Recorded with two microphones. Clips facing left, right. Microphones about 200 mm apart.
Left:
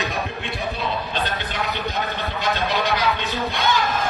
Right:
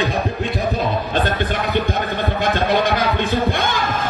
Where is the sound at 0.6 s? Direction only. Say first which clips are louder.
Right 4 dB; 50° right (ahead or behind).